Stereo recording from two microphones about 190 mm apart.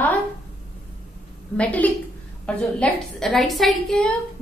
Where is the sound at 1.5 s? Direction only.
5° left (ahead or behind).